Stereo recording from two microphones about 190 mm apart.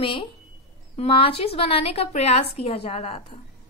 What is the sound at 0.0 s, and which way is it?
A woman's voice, 25° left (ahead or behind).